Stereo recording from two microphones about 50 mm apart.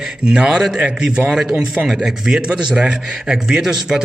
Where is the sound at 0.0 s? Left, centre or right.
Centre.